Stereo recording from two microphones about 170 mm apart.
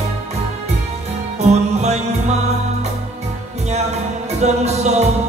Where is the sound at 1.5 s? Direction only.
40° right (ahead or behind).